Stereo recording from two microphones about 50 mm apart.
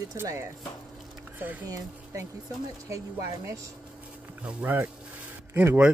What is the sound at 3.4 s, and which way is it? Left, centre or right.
Speech, right.